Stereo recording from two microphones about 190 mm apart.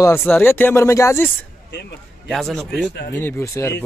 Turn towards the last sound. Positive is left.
turn(degrees=15)  # may be behind; listen again after turning